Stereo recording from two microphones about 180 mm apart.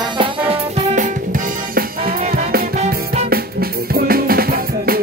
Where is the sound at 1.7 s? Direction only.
55° right (ahead or behind).